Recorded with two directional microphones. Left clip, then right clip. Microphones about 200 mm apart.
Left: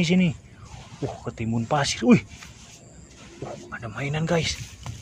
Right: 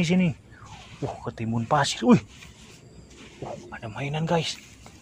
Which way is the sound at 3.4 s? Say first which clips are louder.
Even; 15° left (ahead or behind).